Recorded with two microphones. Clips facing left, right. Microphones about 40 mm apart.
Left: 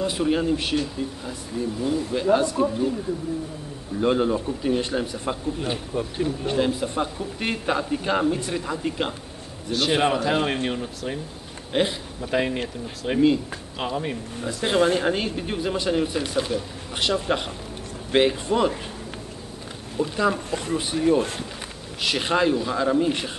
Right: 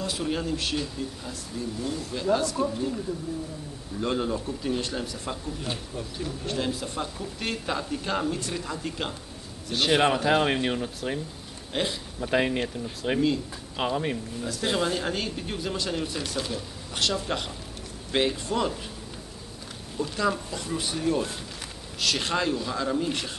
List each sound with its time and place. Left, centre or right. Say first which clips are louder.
0.0 s a man's voice: left 7 dB; left
1.8 s speech: left 8 dB; centre
4.0 s a man's voice: left 6 dB; centre
9.7 s speech: left 1 dB; centre
11.7 s a man's voice: left 6 dB; centre
12.2 s speech: even; centre
14.4 s a man's voice: left 5 dB; centre
14.8 s speech: left 10 dB; left
15.0 s a man's voice: left 6 dB; centre
20.0 s a man's voice: left 4 dB; left
20.4 s speech: left 6 dB; left
20.7 s a man's voice: left 6 dB; left